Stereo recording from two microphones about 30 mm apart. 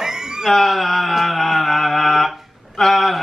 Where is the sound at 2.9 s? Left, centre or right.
Centre.